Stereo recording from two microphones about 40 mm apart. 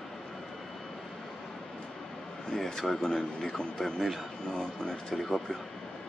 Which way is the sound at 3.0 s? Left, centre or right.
Centre.